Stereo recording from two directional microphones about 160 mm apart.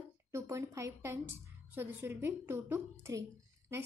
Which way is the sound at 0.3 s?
15° right (ahead or behind).